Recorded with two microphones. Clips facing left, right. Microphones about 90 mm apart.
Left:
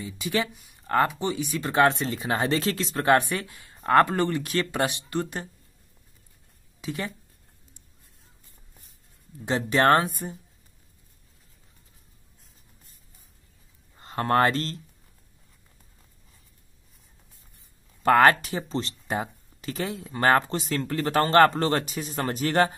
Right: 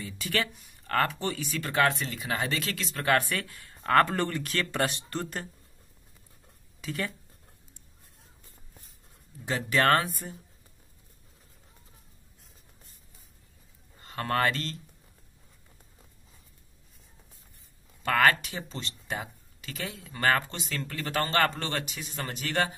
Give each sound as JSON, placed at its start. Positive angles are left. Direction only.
{"t": 0.0, "sound": "speech", "side_deg": 20}
{"t": 3.2, "sound": "speech", "side_deg": 20}
{"t": 6.8, "sound": "speech", "side_deg": 15}
{"t": 9.4, "sound": "speech", "side_deg": 25}
{"t": 13.9, "sound": "speech", "side_deg": 30}
{"t": 18.0, "sound": "speech", "side_deg": 35}